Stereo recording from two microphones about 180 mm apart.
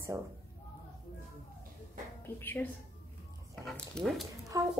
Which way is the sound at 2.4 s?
10° left (ahead or behind).